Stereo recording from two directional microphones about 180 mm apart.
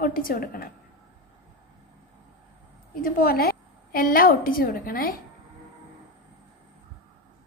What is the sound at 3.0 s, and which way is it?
A woman's voice, 55° left (ahead or behind).